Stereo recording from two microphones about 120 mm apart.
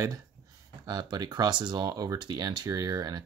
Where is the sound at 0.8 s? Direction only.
35° right (ahead or behind).